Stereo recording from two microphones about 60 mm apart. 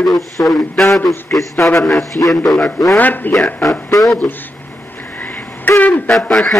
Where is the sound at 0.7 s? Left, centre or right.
Centre.